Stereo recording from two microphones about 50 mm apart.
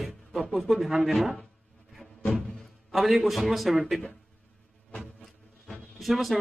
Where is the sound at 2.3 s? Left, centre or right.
Centre.